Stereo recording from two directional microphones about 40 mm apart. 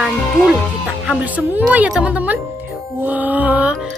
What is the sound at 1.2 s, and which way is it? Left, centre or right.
Speech, right.